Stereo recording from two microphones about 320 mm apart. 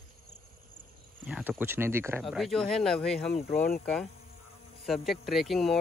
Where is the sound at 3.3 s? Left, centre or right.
Left.